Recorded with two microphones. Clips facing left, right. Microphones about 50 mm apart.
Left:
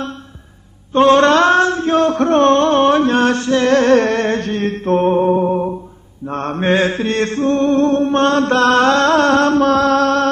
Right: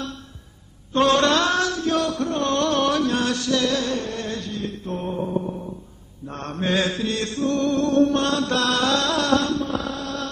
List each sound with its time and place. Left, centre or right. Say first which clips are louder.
0.9 s mantra: left 8 dB; left
6.2 s mantra: left 9 dB; left
9.7 s music: left 15 dB; left